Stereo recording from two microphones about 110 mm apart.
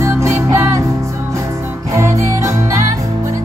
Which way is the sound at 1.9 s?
30° right (ahead or behind).